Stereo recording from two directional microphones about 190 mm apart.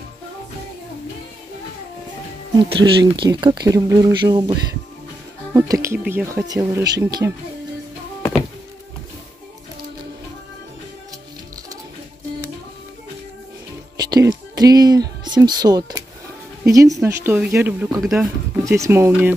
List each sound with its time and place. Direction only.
2.5 s speech: 20° right (ahead or behind)
13.9 s music: 20° right (ahead or behind)
16.6 s speech: 15° right (ahead or behind)
18.6 s speech: 15° right (ahead or behind)